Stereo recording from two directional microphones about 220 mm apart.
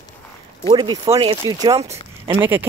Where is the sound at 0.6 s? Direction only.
20° right (ahead or behind).